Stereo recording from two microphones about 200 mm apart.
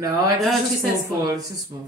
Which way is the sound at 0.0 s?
15° right (ahead or behind).